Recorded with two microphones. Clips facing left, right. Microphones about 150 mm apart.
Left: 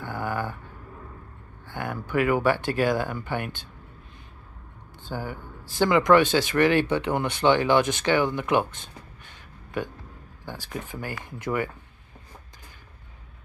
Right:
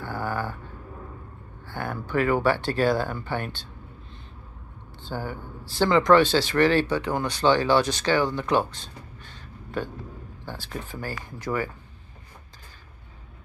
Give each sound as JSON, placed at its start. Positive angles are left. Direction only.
{"t": 0.0, "sound": "a sound", "side_deg": 20}
{"t": 1.7, "sound": "speech", "side_deg": 15}
{"t": 5.1, "sound": "speech", "side_deg": 15}
{"t": 10.4, "sound": "speech", "side_deg": 15}